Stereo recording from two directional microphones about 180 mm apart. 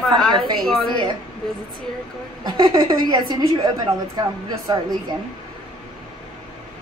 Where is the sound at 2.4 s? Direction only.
25° right (ahead or behind).